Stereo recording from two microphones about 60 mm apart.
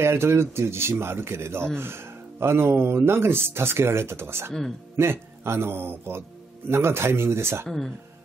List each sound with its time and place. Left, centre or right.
0.0 s speech: right
7.6 s speech: centre